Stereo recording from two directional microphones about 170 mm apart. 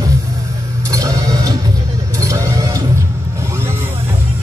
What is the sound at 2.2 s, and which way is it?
Vehicle, 20° right (ahead or behind).